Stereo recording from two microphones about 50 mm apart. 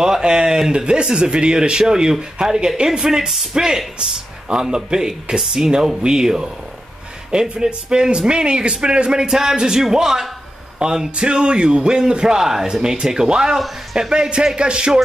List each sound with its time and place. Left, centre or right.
0.0 s speech: centre